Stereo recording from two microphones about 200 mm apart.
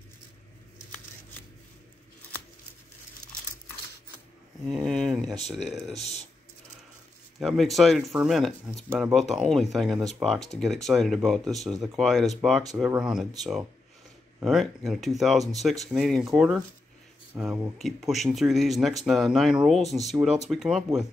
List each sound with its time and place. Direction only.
4.7 s a sound: centre (ahead or behind)
5.5 s speech: centre (ahead or behind)
5.9 s speech: 30° left (ahead or behind)
7.3 s speech: centre (ahead or behind)
9.3 s speech: centre (ahead or behind)